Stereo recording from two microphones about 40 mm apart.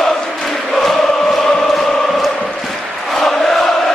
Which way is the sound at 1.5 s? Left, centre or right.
Centre.